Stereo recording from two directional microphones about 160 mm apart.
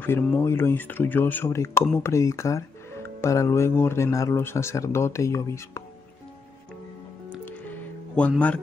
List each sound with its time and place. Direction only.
0.0 s speech: 15° left (ahead or behind)
7.4 s music: 10° left (ahead or behind)